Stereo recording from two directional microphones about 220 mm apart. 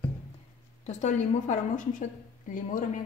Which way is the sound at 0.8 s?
30° left (ahead or behind).